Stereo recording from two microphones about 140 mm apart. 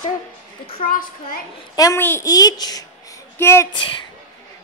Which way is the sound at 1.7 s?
25° left (ahead or behind).